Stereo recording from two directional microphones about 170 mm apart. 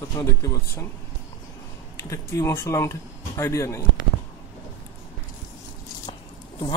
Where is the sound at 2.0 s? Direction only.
20° left (ahead or behind).